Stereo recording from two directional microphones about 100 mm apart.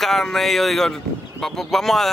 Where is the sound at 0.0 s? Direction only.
5° left (ahead or behind).